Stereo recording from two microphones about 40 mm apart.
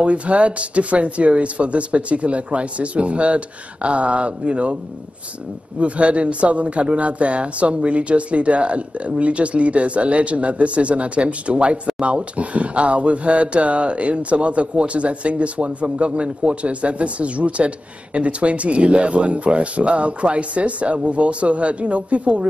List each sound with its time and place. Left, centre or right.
0.0 s speech: right
5.8 s speech: right